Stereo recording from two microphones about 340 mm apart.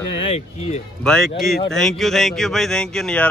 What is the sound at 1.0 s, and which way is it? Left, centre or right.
A man's voice, centre.